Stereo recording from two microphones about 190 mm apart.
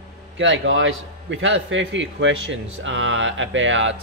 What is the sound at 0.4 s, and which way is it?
Speech, 85° right.